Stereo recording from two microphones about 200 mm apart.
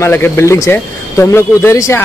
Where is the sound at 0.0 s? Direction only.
10° left (ahead or behind).